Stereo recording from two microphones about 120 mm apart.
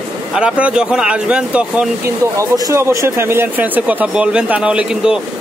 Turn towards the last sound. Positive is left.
turn(degrees=-5)  # may be behind; listen again after turning